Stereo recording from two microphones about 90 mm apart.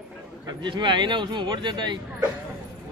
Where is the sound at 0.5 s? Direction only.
60° right (ahead or behind).